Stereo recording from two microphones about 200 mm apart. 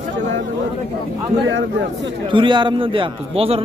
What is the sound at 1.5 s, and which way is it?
Speech, 65° right (ahead or behind).